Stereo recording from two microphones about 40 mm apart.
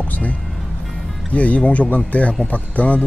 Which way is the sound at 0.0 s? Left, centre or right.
Left.